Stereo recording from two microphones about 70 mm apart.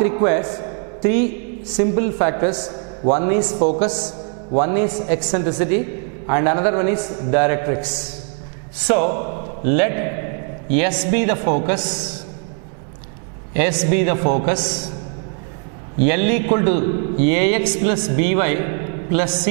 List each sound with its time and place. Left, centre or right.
0.0 s a man's voice: centre
8.8 s a man's voice: centre
13.6 s a man's voice: centre
16.1 s a man's voice: centre